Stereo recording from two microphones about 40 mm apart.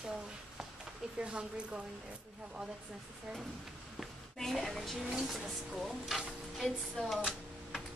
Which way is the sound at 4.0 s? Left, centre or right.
Centre.